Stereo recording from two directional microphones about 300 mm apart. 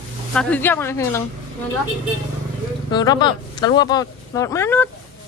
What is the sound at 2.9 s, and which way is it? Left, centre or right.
Speech, centre.